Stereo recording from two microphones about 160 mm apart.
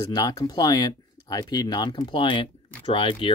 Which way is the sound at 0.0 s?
20° left (ahead or behind).